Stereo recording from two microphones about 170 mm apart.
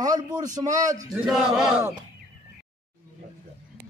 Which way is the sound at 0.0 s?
20° right (ahead or behind).